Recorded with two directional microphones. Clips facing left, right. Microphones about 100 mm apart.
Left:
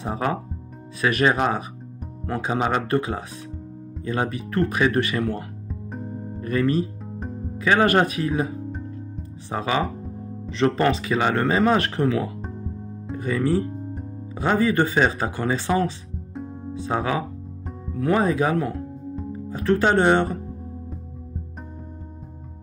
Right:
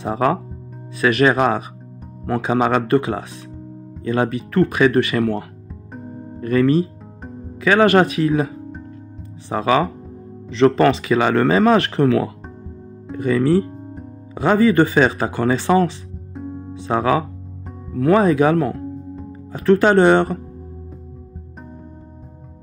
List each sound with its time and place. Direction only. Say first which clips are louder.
0.0 s speech: right 6 dB; 90° right
2.2 s speech: right 6 dB; 75° right (ahead or behind)
6.4 s speech: right 6 dB; 90° right
9.5 s speech: right 6 dB; 90° right
16.3 s music: right 4 dB; centre (ahead or behind)
16.7 s speech: right 6 dB; 85° right